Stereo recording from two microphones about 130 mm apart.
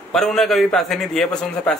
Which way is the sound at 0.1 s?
5° left (ahead or behind).